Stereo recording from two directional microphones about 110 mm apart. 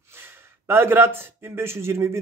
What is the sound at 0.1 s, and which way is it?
A man's voice, 20° right (ahead or behind).